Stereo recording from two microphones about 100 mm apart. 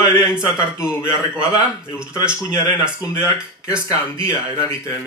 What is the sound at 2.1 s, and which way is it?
A man's voice, 30° left (ahead or behind).